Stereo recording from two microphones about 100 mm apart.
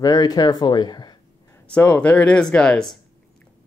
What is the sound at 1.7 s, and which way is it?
Speech, 15° left (ahead or behind).